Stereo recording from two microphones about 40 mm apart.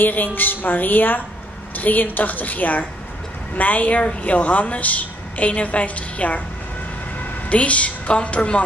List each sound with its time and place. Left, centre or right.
0.0 s a woman's voice: left